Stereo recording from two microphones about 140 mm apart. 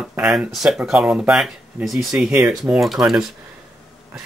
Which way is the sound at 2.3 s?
15° right (ahead or behind).